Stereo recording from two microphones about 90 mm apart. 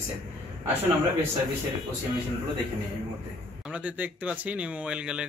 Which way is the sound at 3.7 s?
15° right (ahead or behind).